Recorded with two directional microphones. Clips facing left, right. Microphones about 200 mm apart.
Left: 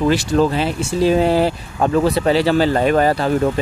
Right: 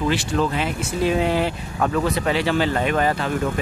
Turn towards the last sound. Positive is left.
turn(degrees=35)  # may be behind; listen again after turning